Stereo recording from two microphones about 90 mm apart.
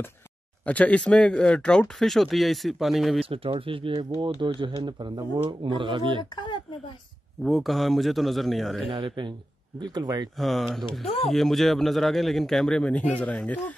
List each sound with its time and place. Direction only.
0.7 s speech: 15° left (ahead or behind); by 3.2 s centre (ahead or behind)
3.3 s speech: 85° right; by 5.2 s 55° right (ahead or behind)
5.3 s speech: 65° right (ahead or behind)
6.3 s a sound: 60° left (ahead or behind)
7.4 s speech: centre (ahead or behind)
8.9 s speech: 60° right (ahead or behind)
9.8 s speech: 50° right (ahead or behind)
10.3 s speech: centre (ahead or behind)